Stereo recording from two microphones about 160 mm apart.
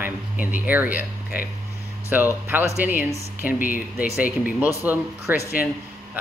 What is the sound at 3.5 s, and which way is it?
Speech, 60° left (ahead or behind).